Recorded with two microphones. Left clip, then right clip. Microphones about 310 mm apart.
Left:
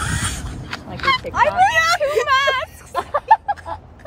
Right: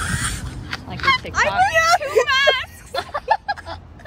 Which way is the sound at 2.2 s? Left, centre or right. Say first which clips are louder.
Even; left.